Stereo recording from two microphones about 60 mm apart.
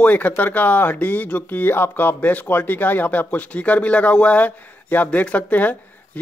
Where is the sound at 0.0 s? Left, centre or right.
Left.